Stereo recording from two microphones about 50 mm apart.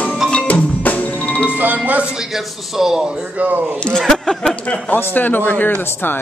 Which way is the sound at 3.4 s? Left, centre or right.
Right.